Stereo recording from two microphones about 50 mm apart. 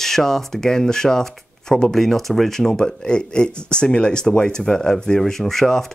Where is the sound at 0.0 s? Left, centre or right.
Centre.